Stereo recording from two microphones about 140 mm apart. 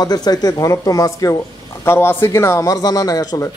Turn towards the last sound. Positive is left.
turn(degrees=25)  # may be behind; listen again after turning